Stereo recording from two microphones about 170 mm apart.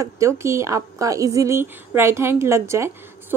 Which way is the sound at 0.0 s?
15° right (ahead or behind).